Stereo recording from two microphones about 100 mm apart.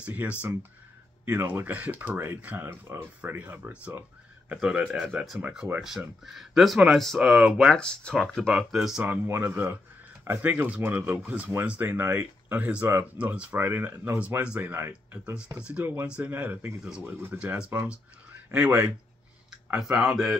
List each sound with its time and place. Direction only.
0.0 s speech: 15° right (ahead or behind)
9.0 s speech: 15° right (ahead or behind)
15.8 s speech: 20° right (ahead or behind); by 20.3 s 5° right (ahead or behind)